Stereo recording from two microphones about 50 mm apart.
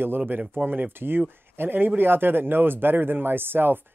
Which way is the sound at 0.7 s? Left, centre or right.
Right.